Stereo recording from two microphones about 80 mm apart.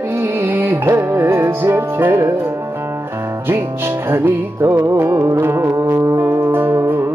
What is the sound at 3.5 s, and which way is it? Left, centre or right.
Music, right.